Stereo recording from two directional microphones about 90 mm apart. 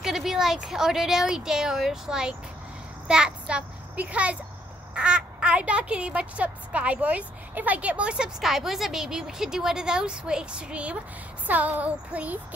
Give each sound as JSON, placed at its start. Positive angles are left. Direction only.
{"t": 0.0, "sound": "a child's voice", "side_deg": -5}